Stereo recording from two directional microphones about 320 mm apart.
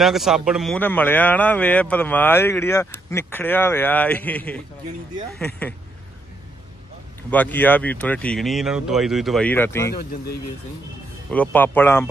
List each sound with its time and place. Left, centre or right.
0.0 s a man's voice: centre
7.2 s a man's voice: centre
9.8 s speech: left
11.2 s a man's voice: centre